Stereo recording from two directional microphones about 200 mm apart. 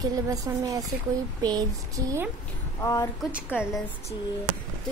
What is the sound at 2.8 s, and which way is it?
Speech, 20° left (ahead or behind).